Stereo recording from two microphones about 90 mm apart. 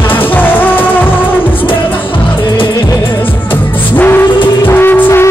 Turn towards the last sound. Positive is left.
turn(degrees=25)  # may be behind; listen again after turning